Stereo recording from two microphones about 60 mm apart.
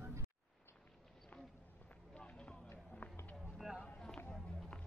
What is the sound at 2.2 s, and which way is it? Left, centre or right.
Run, centre.